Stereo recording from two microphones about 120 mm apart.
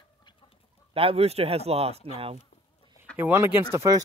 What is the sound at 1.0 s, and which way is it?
Speech, 55° right (ahead or behind).